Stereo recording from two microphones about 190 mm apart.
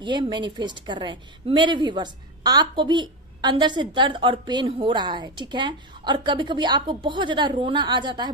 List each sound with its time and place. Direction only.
0.0 s a woman's voice: 25° right (ahead or behind)